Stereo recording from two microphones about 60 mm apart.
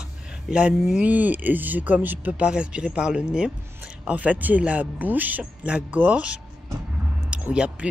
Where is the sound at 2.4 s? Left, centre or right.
Centre.